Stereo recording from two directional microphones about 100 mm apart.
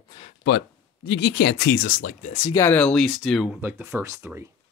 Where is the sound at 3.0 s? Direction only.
Centre (ahead or behind).